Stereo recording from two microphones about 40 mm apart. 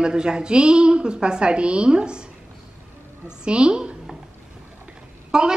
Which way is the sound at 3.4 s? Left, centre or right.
Right.